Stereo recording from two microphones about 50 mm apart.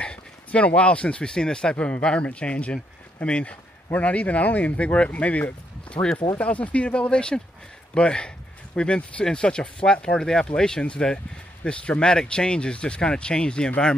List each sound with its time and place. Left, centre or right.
0.0 s speech: left